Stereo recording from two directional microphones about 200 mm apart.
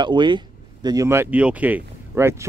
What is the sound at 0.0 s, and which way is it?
Speech, 25° right (ahead or behind).